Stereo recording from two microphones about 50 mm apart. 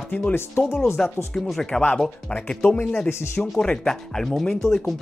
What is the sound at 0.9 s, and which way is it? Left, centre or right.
Speech, centre.